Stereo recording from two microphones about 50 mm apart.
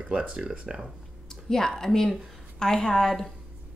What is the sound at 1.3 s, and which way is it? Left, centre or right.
A woman's voice, centre.